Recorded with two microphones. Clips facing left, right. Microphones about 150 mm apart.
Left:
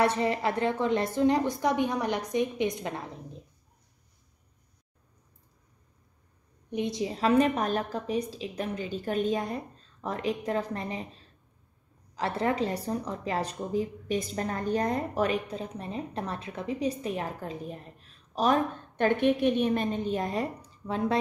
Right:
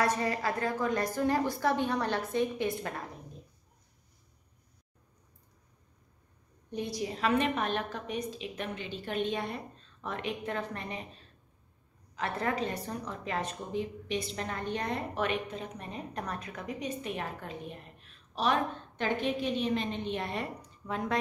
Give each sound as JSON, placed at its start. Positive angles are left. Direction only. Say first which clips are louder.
{"t": 0.0, "sound": "a woman's voice", "louder": "left 4 dB", "side_deg": 25}
{"t": 6.7, "sound": "a woman's voice", "louder": "left 4 dB", "side_deg": 20}
{"t": 19.0, "sound": "a woman's voice", "louder": "left 7 dB", "side_deg": 60}